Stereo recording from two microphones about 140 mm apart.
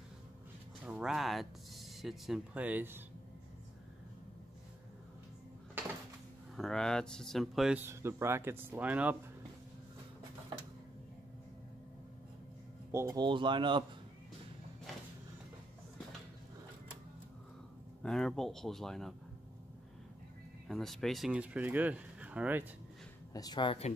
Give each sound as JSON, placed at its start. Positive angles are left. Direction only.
{"t": 0.8, "sound": "speech", "side_deg": -5}
{"t": 6.5, "sound": "speech", "side_deg": 5}
{"t": 7.8, "sound": "speech", "side_deg": -15}
{"t": 12.9, "sound": "speech", "side_deg": -30}
{"t": 18.0, "sound": "speech", "side_deg": 5}
{"t": 20.6, "sound": "speech", "side_deg": 0}
{"t": 23.3, "sound": "speech", "side_deg": 30}